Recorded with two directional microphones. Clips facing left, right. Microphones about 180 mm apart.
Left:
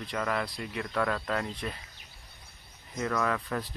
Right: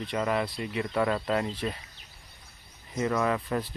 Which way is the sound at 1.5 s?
30° right (ahead or behind).